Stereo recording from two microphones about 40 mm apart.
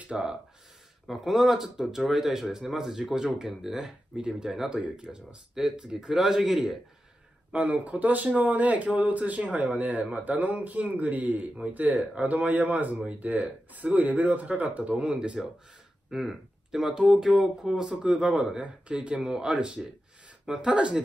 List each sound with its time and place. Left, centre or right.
0.1 s a man's voice: centre
1.0 s a man's voice: centre
4.8 s a man's voice: right; by 6.8 s centre
7.5 s speech: right
15.4 s a man's voice: centre
18.0 s speech: right
19.2 s a man's voice: centre
19.5 s speech: right